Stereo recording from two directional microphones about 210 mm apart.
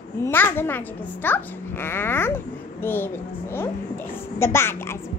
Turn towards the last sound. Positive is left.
turn(degrees=10)  # may be behind; listen again after turning